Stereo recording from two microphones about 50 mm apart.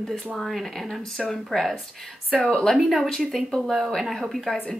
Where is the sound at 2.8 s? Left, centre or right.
Centre.